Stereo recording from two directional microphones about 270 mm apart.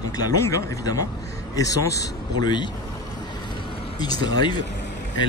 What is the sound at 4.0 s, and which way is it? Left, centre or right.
Speech, centre.